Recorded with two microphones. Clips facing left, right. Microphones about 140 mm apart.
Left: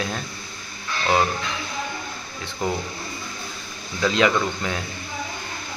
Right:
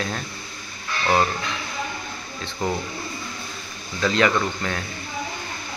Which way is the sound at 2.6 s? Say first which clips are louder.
Even; 15° left (ahead or behind).